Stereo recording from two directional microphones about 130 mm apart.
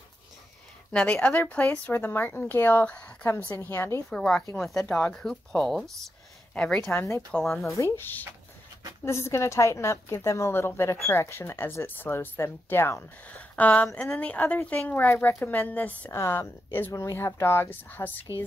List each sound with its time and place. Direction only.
0.9 s speech: 10° left (ahead or behind)
4.1 s speech: 5° left (ahead or behind)
7.0 s speech: 20° left (ahead or behind)
7.3 s speech: 5° left (ahead or behind)
7.6 s speech: 25° left (ahead or behind)